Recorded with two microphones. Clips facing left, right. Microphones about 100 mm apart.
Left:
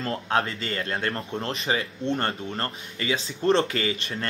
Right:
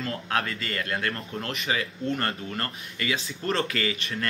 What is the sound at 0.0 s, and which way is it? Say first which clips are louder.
Speech: left 3 dB; 30° left (ahead or behind).